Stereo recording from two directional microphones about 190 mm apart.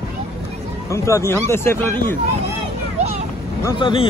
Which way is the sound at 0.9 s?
15° left (ahead or behind).